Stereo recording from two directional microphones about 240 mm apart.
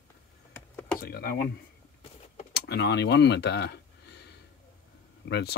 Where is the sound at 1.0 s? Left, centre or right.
Left.